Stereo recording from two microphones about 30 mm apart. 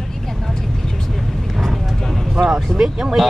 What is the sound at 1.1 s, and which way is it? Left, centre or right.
Vehicle, centre.